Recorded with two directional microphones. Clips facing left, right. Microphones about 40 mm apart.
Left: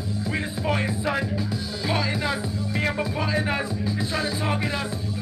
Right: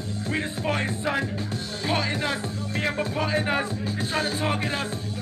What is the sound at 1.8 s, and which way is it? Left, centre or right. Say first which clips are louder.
Music: even; right.